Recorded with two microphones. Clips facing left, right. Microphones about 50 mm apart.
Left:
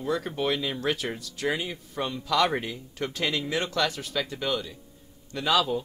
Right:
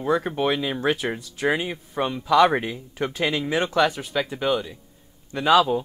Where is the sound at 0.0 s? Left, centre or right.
Right.